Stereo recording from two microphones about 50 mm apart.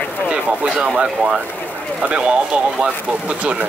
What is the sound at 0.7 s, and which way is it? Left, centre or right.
Speech, centre.